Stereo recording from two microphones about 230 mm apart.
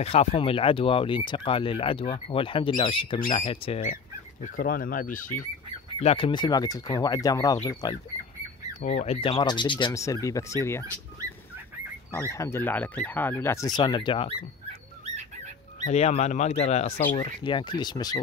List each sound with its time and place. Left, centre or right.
0.0 s speech: left
5.9 s speech: left
8.7 s speech: left; by 10.9 s centre
12.1 s speech: centre
15.8 s speech: left
17.4 s speech: left